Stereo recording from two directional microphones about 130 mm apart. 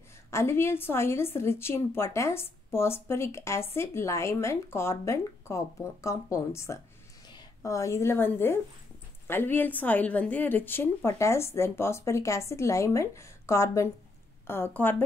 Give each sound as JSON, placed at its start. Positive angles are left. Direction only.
{"t": 0.3, "sound": "a woman's voice", "side_deg": 20}